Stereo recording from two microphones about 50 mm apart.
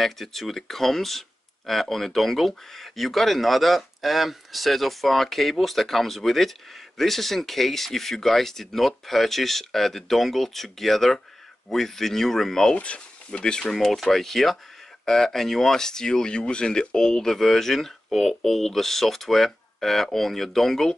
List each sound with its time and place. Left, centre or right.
0.0 s speech: centre
12.7 s speech: left
13.7 s speech: centre